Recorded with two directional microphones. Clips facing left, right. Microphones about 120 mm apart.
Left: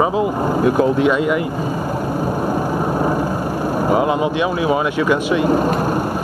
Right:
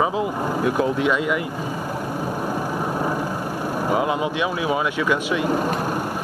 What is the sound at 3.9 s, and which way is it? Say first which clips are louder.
Speech: left 5 dB; 45° left (ahead or behind).